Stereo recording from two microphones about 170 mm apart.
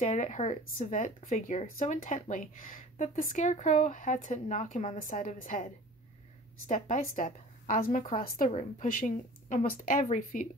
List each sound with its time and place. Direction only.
0.0 s speech: 45° left (ahead or behind)
6.7 s speech: 50° left (ahead or behind)